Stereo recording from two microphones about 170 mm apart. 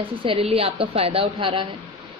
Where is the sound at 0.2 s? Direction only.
35° right (ahead or behind).